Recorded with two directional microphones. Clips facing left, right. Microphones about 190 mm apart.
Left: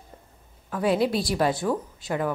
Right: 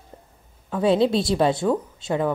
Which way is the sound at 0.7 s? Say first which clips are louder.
Right 4 dB; 25° right (ahead or behind).